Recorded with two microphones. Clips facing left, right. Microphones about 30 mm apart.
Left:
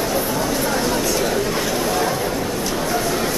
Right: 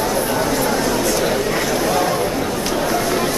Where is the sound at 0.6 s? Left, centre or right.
Centre.